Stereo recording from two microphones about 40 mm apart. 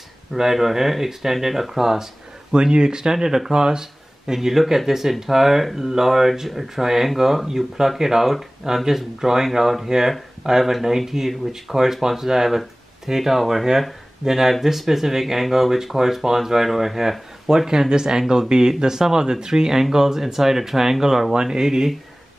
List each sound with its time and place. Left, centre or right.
0.3 s speech: centre